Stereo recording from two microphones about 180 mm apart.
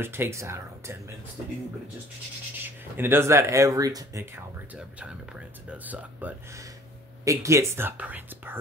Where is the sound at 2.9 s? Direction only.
10° right (ahead or behind).